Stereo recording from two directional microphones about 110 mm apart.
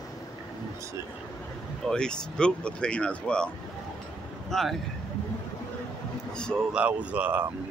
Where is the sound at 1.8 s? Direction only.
5° left (ahead or behind).